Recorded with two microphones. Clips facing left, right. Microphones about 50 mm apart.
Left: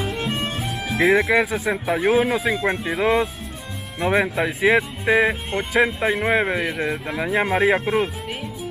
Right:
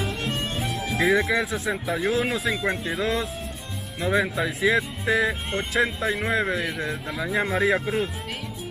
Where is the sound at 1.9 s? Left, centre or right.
Left.